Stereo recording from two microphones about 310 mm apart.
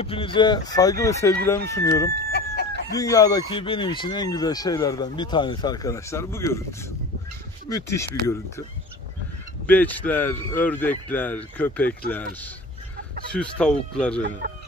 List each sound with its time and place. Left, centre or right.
0.0 s speech: centre
2.3 s chicken: left
3.0 s speech: centre
9.7 s a man's voice: centre
13.3 s a man's voice: centre